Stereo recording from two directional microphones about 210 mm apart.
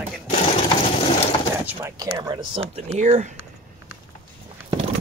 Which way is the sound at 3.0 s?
35° right (ahead or behind).